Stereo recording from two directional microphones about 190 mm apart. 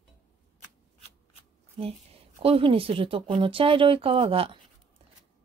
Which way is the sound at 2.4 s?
30° right (ahead or behind).